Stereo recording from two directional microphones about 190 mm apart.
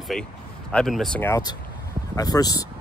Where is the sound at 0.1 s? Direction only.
Centre (ahead or behind).